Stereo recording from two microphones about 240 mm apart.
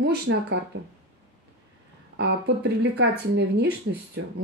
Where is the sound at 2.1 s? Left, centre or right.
Right.